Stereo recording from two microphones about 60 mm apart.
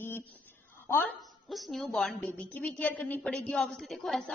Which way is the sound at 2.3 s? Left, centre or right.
Left.